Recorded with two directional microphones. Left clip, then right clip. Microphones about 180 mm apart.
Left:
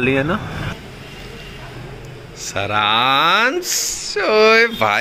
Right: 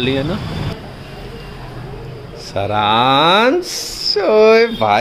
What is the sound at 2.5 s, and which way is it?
Speech, 10° right (ahead or behind).